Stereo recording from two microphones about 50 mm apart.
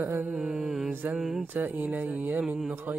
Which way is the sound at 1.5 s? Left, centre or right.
Right.